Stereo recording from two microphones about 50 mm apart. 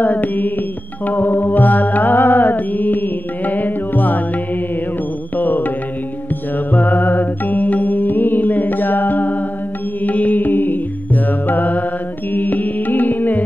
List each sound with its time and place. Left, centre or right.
0.0 s music: left
1.0 s mantra: left
5.4 s music: left
6.7 s music: left